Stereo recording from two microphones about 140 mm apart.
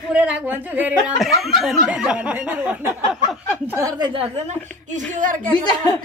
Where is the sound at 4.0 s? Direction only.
40° right (ahead or behind).